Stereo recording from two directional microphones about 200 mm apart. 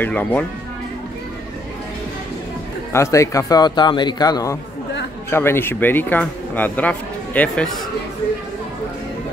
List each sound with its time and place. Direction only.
0.0 s speech: 10° left (ahead or behind)
2.9 s speech: 15° left (ahead or behind)